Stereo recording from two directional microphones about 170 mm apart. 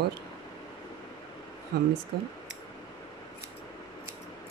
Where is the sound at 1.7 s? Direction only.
70° right (ahead or behind).